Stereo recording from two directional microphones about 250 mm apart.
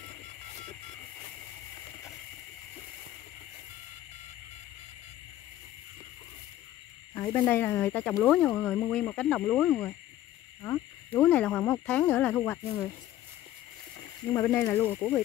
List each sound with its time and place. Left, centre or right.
7.2 s speech: centre
14.3 s speech: centre